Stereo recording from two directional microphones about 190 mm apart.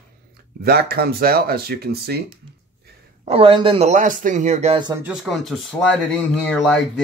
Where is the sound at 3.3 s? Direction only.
30° right (ahead or behind).